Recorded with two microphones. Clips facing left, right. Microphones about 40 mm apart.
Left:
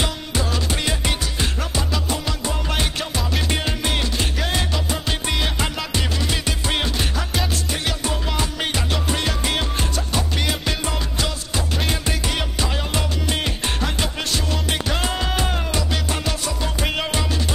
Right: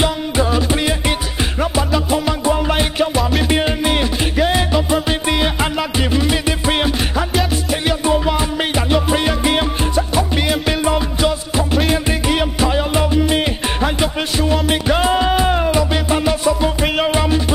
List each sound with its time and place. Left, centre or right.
0.0 s music: centre
3.4 s music: centre